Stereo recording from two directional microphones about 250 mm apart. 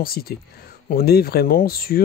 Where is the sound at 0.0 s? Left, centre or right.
Left.